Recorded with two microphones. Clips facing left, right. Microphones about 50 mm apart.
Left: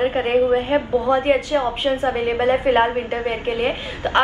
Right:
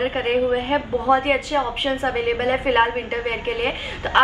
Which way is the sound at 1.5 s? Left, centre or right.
Centre.